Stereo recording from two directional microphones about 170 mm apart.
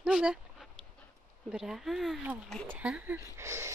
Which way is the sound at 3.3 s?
15° right (ahead or behind).